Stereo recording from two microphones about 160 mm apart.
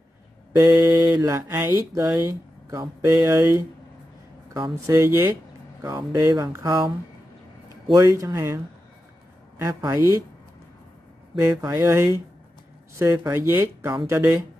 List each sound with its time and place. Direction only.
0.6 s speech: 15° right (ahead or behind)
4.8 s speech: 15° right (ahead or behind)
7.9 s speech: 20° right (ahead or behind)
9.6 s speech: 20° right (ahead or behind)
11.3 s speech: 20° right (ahead or behind)